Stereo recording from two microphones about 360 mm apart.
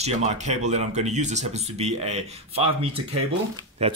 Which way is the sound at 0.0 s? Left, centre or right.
Centre.